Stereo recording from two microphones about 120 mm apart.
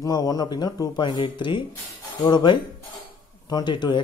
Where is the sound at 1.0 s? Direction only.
40° left (ahead or behind).